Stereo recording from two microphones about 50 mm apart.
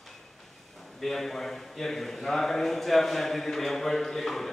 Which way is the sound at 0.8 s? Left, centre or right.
Centre.